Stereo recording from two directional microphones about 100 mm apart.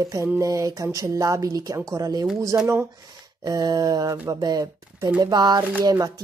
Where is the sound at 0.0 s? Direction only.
30° right (ahead or behind).